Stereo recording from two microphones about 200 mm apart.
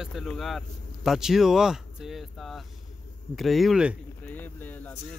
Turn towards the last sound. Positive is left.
turn(degrees=10)  # may be behind; listen again after turning